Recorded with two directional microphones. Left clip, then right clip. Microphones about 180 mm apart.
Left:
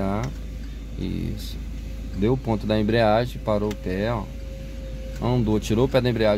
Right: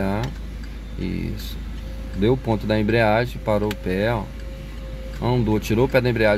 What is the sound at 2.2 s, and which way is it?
Speech, 20° right (ahead or behind).